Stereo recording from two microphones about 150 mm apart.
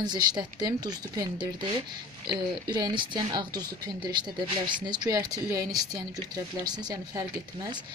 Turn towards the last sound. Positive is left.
turn(degrees=-25)  # may be behind; listen again after turning